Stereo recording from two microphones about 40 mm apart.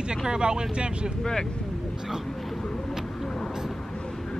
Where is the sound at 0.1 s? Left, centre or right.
Centre.